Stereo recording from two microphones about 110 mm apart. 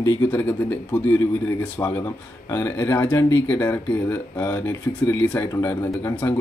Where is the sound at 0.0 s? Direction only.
20° left (ahead or behind).